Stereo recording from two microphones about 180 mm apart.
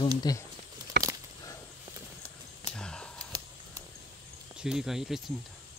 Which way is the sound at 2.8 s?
5° left (ahead or behind).